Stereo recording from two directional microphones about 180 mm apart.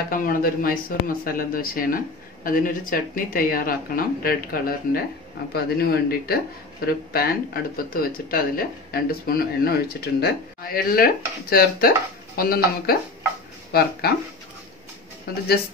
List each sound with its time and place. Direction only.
0.1 s speech: 50° left (ahead or behind)
15.3 s speech: 55° left (ahead or behind)